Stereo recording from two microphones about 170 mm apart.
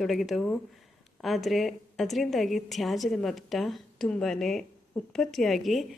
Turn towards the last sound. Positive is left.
turn(degrees=0)  # may be behind; listen again after turning